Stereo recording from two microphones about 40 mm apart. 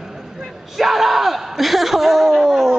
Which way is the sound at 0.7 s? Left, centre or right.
Centre.